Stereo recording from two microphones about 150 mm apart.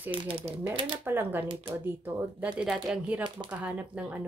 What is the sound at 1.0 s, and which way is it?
Speech, 15° right (ahead or behind).